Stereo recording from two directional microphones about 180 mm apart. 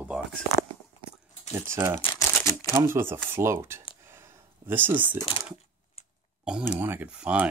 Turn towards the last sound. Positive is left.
turn(degrees=-5)  # may be behind; listen again after turning